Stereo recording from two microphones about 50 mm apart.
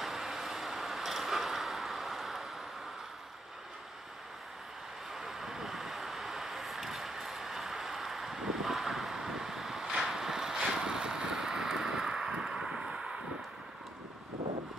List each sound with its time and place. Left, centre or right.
0.0 s vehicle: centre
5.1 s vehicle: centre